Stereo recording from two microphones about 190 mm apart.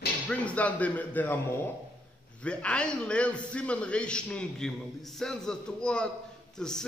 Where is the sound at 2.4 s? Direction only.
5° left (ahead or behind).